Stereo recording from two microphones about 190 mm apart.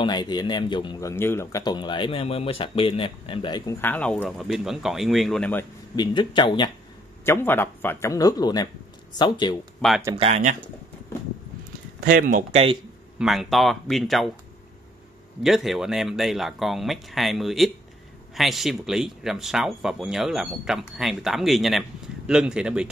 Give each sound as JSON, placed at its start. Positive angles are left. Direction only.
{"t": 0.0, "sound": "a man's voice", "side_deg": 20}
{"t": 3.8, "sound": "speech", "side_deg": 10}
{"t": 5.9, "sound": "a man's voice", "side_deg": 25}
{"t": 7.2, "sound": "a man's voice", "side_deg": 10}
{"t": 9.8, "sound": "speech", "side_deg": 0}
{"t": 10.1, "sound": "speech", "side_deg": -35}
{"t": 12.0, "sound": "speech", "side_deg": -50}
{"t": 13.2, "sound": "speech", "side_deg": 0}
{"t": 15.4, "sound": "speech", "side_deg": 0}